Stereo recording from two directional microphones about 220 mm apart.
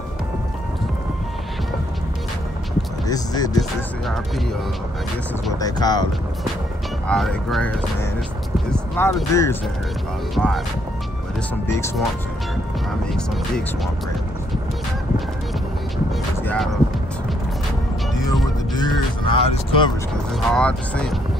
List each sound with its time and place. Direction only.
3.1 s speech: 15° left (ahead or behind)
5.6 s speech: 15° left (ahead or behind)
7.1 s speech: centre (ahead or behind)
10.3 s speech: centre (ahead or behind)
11.7 s speech: 10° left (ahead or behind)
16.4 s speech: centre (ahead or behind)
18.8 s music: 20° left (ahead or behind)
20.5 s speech: 5° left (ahead or behind)